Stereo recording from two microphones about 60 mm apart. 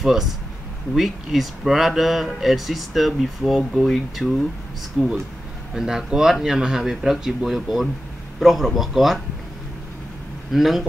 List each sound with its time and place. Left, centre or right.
0.0 s speech: centre
5.0 s speech: centre
10.5 s speech: centre